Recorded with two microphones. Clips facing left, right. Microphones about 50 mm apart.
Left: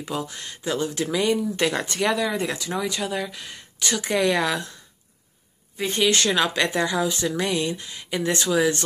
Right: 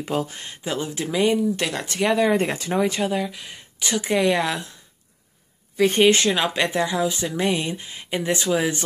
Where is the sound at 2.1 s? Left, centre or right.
Right.